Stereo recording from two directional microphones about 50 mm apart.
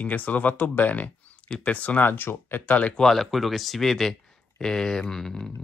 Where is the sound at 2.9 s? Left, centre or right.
Centre.